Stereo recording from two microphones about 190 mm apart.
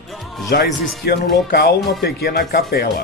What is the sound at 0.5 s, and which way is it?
Speech, 55° left (ahead or behind).